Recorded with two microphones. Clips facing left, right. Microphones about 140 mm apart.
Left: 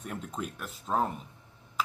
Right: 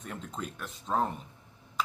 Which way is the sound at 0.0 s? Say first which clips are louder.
Left 2 dB; 10° left (ahead or behind).